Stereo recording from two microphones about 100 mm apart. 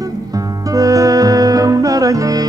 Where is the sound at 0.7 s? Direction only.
35° right (ahead or behind).